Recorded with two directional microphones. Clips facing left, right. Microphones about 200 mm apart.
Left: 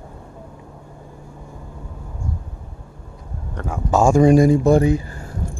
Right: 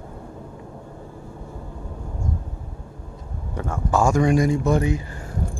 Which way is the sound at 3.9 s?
30° left (ahead or behind).